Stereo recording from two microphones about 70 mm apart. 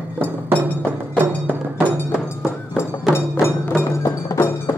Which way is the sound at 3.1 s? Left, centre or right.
Left.